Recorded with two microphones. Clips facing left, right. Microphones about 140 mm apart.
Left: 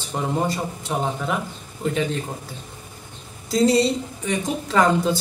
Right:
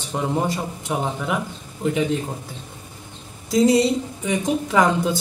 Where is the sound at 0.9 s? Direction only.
5° right (ahead or behind).